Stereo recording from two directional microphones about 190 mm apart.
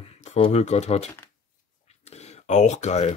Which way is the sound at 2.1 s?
35° left (ahead or behind).